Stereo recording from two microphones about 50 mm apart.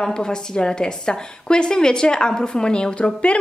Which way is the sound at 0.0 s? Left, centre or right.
Centre.